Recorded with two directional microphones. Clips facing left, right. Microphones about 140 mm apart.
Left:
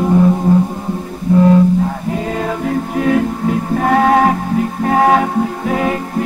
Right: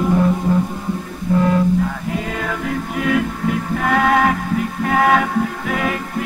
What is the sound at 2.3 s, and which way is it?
Music, 30° left (ahead or behind).